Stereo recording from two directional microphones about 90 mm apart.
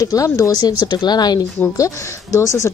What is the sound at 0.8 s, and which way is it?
Speech, 50° left (ahead or behind).